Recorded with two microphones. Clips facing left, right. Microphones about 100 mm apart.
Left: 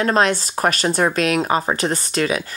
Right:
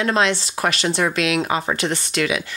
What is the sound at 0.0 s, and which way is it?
Speech, 45° left (ahead or behind).